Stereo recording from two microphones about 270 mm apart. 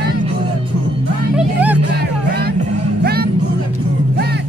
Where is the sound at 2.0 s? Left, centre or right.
Right.